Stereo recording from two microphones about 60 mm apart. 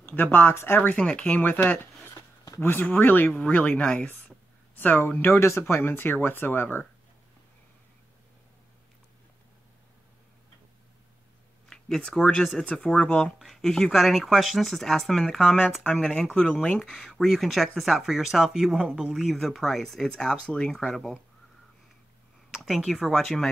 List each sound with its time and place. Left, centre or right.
0.0 s speech: left
0.9 s speech: centre
1.4 s speech: left; by 4.1 s centre
4.7 s speech: left
5.2 s speech: left
11.7 s speech: centre
13.4 s speech: centre
16.6 s speech: centre
16.9 s speech: centre
19.1 s speech: centre
22.8 s speech: centre